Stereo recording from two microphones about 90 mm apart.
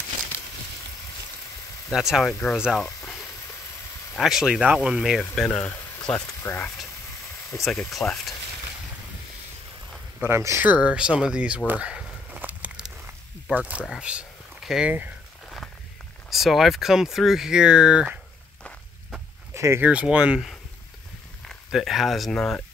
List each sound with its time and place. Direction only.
1.9 s speech: 5° right (ahead or behind)
4.2 s speech: 5° right (ahead or behind)
5.3 s speech: 10° left (ahead or behind)
5.6 s a sound: 20° left (ahead or behind)
6.1 s speech: 30° left (ahead or behind)
7.6 s speech: centre (ahead or behind)
10.2 s speech: 30° right (ahead or behind)
10.6 s speech: 15° right (ahead or behind)
14.9 s speech: 15° right (ahead or behind)
16.3 s speech: centre (ahead or behind)
19.5 s a sound: 30° right (ahead or behind)
19.8 s speech: 15° right (ahead or behind)
21.6 s speech: centre (ahead or behind)